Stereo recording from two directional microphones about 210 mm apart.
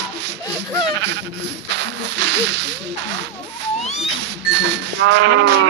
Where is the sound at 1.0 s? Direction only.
55° right (ahead or behind).